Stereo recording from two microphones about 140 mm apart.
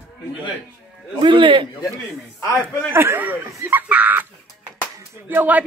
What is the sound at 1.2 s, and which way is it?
Speech, 35° right (ahead or behind).